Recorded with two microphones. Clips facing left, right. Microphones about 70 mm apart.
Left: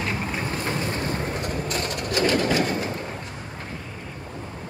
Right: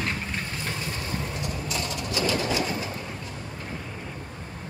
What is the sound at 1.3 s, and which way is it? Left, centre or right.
Vehicle, left.